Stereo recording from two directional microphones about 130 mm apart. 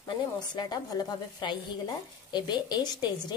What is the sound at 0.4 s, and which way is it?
Speech, 35° left (ahead or behind).